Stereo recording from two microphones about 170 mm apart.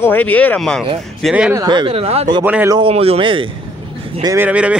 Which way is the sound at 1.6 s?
25° right (ahead or behind).